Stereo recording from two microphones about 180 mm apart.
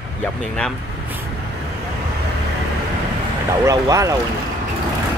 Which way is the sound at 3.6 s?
20° right (ahead or behind).